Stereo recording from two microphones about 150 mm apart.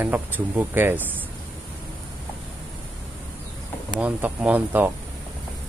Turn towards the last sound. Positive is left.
turn(degrees=-10)  # may be behind; listen again after turning